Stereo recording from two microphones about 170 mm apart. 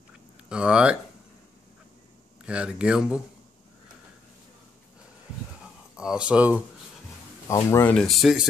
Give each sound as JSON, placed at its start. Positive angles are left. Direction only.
{"t": 0.5, "sound": "speech", "side_deg": -5}
{"t": 2.4, "sound": "speech", "side_deg": -5}
{"t": 5.9, "sound": "speech", "side_deg": -5}
{"t": 7.4, "sound": "speech", "side_deg": 15}
{"t": 7.9, "sound": "speech", "side_deg": 0}